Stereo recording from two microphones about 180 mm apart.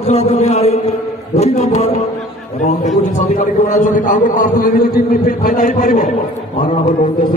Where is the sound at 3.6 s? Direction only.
40° left (ahead or behind).